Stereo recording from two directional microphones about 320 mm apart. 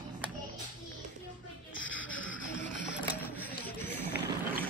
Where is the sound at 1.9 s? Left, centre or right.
Centre.